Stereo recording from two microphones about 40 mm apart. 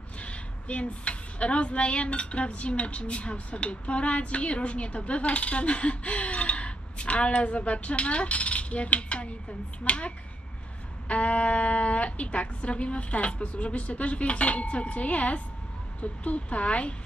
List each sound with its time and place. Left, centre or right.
0.2 s a woman's voice: left